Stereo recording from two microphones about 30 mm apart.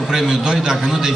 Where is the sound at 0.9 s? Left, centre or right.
Centre.